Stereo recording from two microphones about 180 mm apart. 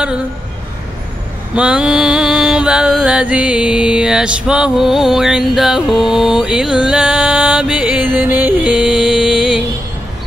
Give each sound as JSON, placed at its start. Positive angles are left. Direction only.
{"t": 1.5, "sound": "mantra", "side_deg": -5}